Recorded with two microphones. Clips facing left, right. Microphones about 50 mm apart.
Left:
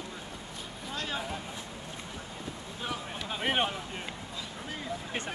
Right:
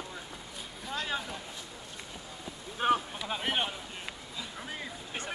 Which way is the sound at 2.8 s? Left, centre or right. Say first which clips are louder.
Right 10 dB; right.